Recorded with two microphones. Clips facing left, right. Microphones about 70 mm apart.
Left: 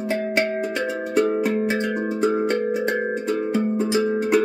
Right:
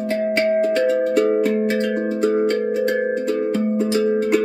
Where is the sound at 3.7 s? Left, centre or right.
Centre.